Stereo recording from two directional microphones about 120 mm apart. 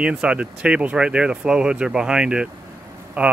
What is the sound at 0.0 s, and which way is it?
Speech, 5° right (ahead or behind).